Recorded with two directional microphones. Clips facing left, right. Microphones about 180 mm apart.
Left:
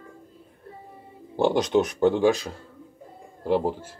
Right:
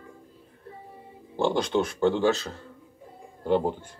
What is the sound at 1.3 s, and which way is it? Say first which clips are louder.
Speech: left 3 dB; 20° left (ahead or behind).